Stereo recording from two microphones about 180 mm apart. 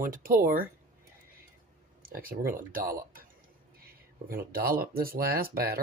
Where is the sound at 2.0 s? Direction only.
55° right (ahead or behind).